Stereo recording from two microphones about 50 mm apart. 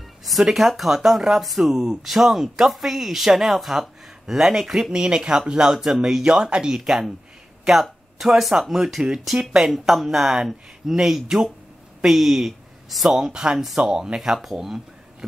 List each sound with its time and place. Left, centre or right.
0.2 s speech: centre
4.9 s speech: centre
8.2 s speech: centre
9.7 s speech: centre